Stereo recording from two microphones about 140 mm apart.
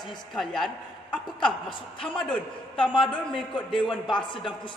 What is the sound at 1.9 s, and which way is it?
Speech, 5° left (ahead or behind).